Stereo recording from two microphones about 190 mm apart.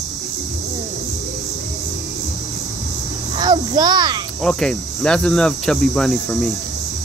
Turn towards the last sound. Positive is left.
turn(degrees=0)  # may be behind; listen again after turning